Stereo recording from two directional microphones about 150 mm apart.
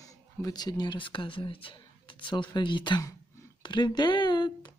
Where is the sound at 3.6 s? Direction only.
30° left (ahead or behind).